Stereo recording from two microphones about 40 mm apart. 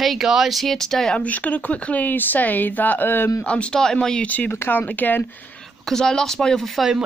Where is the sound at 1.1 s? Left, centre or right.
Left.